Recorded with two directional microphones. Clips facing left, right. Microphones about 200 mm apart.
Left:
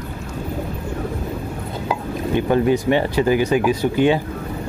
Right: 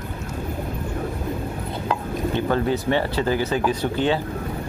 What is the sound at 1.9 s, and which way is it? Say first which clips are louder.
Speech: left 3 dB; 15° left (ahead or behind).